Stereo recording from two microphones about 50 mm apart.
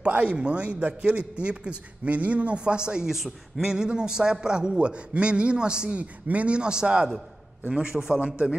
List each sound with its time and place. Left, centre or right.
0.0 s a man's voice: right; by 8.2 s centre